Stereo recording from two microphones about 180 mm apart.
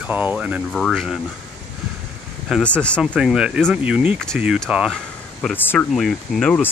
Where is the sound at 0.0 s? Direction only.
10° right (ahead or behind).